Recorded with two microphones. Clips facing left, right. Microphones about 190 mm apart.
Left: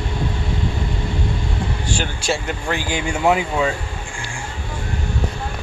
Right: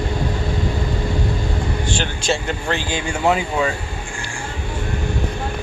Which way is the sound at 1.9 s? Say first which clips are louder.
Even; 10° left (ahead or behind).